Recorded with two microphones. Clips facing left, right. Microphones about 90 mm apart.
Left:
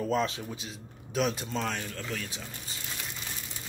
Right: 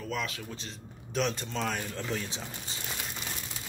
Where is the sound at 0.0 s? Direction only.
35° left (ahead or behind).